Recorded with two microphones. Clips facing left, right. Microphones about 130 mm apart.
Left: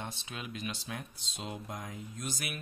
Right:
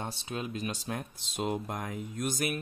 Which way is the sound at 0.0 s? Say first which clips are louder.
Right 6 dB; 35° right (ahead or behind).